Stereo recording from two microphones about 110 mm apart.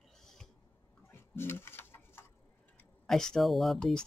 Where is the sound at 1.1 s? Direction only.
20° left (ahead or behind).